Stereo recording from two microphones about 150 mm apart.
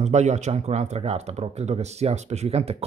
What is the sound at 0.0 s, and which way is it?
Speech, 50° right (ahead or behind).